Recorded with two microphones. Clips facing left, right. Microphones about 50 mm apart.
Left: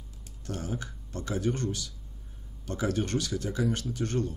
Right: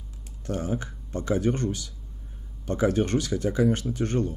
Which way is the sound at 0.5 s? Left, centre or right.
Right.